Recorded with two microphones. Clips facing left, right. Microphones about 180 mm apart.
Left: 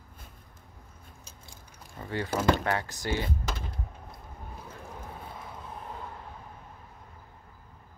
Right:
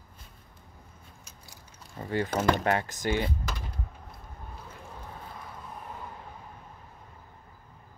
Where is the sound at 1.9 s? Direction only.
20° right (ahead or behind).